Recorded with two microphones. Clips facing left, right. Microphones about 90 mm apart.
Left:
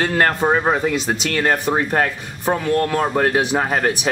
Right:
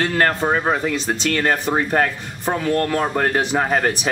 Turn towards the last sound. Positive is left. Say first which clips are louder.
# even
turn(degrees=5)  # may be behind; listen again after turning